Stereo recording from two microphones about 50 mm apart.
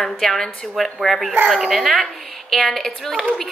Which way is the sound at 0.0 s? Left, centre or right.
Centre.